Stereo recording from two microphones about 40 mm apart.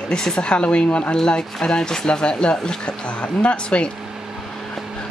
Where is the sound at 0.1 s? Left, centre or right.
Left.